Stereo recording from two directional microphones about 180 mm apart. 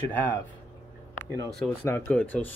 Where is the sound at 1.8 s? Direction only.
10° left (ahead or behind).